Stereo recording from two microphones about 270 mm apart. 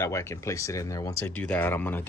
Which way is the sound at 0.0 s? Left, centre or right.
Centre.